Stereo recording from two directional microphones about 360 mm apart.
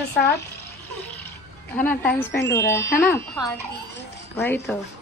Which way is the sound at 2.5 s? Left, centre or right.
Centre.